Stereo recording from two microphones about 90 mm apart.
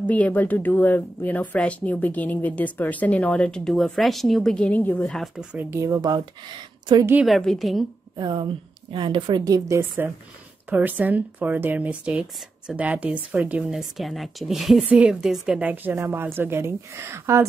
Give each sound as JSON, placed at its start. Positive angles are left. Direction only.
{"t": 0.0, "sound": "speech", "side_deg": 20}
{"t": 5.1, "sound": "a woman's voice", "side_deg": 0}
{"t": 5.6, "sound": "speech", "side_deg": -30}
{"t": 7.2, "sound": "a woman's voice", "side_deg": 0}
{"t": 8.2, "sound": "a woman's voice", "side_deg": -55}
{"t": 9.4, "sound": "a woman's voice", "side_deg": -40}
{"t": 15.6, "sound": "speech", "side_deg": -20}